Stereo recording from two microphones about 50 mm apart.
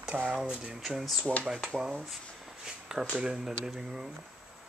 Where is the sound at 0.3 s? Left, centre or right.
Centre.